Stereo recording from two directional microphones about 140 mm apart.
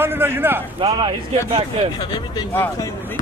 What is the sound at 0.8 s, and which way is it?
Speech, 35° right (ahead or behind).